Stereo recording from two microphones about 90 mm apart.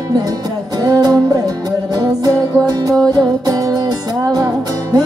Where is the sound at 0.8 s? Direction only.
45° right (ahead or behind).